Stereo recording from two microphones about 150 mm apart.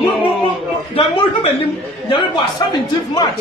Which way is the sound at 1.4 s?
35° left (ahead or behind).